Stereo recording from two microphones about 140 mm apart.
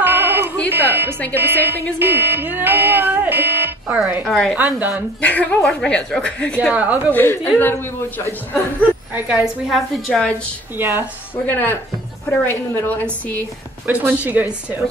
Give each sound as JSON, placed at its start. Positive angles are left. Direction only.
{"t": 0.0, "sound": "a sound", "side_deg": -15}
{"t": 0.7, "sound": "music", "side_deg": -15}
{"t": 1.3, "sound": "a woman's voice", "side_deg": -15}
{"t": 4.2, "sound": "a woman's voice", "side_deg": 5}
{"t": 4.6, "sound": "a woman's voice", "side_deg": -15}
{"t": 5.2, "sound": "speech", "side_deg": 10}
{"t": 6.7, "sound": "a woman's voice", "side_deg": -10}
{"t": 7.2, "sound": "speech", "side_deg": 15}
{"t": 9.1, "sound": "a woman's voice", "side_deg": -5}
{"t": 10.8, "sound": "a woman's voice", "side_deg": -15}
{"t": 11.4, "sound": "speech", "side_deg": 15}
{"t": 13.8, "sound": "a woman's voice", "side_deg": -10}